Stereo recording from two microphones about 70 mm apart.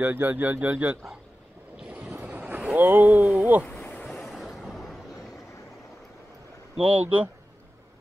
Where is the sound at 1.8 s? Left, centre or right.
Centre.